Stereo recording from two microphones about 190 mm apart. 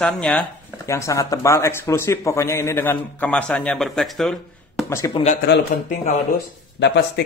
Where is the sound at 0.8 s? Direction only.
15° left (ahead or behind); by 4.8 s centre (ahead or behind).